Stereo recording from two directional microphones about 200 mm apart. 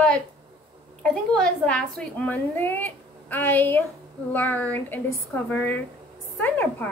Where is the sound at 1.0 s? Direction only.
5° left (ahead or behind).